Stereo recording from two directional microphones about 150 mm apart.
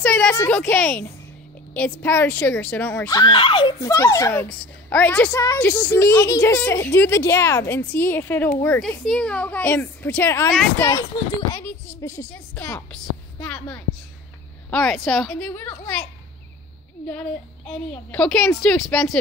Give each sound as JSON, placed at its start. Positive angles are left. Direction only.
{"t": 0.0, "sound": "a woman's voice", "side_deg": 10}
{"t": 3.1, "sound": "speech", "side_deg": 30}
{"t": 3.8, "sound": "a woman's voice", "side_deg": 20}
{"t": 5.3, "sound": "a woman's voice", "side_deg": 25}
{"t": 17.1, "sound": "a woman's voice", "side_deg": 10}